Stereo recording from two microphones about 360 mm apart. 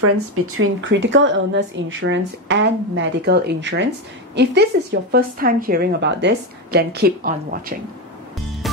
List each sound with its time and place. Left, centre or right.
0.0 s a woman's voice: right